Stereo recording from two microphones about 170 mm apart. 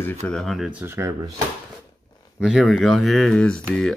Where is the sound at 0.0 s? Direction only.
5° left (ahead or behind); by 1.3 s 15° right (ahead or behind).